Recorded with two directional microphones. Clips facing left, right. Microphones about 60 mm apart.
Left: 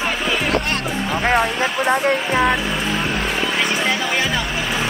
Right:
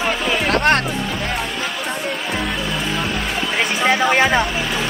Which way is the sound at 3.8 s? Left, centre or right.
Right.